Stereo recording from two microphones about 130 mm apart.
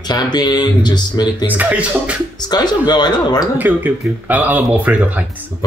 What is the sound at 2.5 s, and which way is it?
Speech, 30° left (ahead or behind).